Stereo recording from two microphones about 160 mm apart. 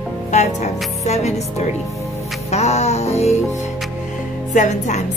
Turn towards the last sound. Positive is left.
turn(degrees=50)  # may be behind; listen again after turning